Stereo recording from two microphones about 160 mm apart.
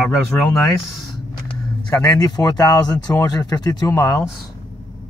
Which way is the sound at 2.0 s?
25° left (ahead or behind).